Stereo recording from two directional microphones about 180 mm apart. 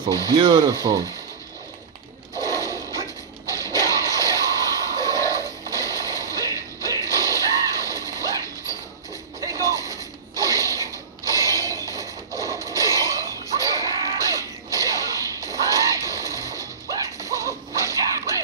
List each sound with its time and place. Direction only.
0.3 s speech: 30° right (ahead or behind)
2.4 s a sound: 20° left (ahead or behind)
9.4 s a sound: 20° right (ahead or behind)
10.3 s mechanisms: 20° right (ahead or behind)
13.7 s music: 20° right (ahead or behind)
14.2 s whip: 20° right (ahead or behind)